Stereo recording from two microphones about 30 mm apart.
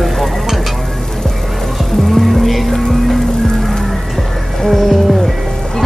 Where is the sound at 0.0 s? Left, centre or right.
Centre.